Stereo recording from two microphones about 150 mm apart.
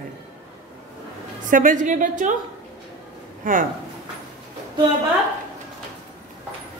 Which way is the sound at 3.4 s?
60° right (ahead or behind).